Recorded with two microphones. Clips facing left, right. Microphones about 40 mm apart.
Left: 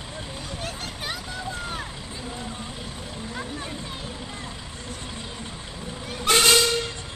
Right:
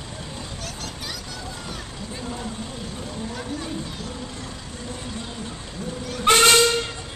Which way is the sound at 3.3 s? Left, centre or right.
Left.